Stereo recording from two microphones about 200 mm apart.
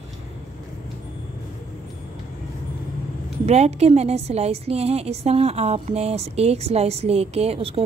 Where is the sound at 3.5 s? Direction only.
30° right (ahead or behind).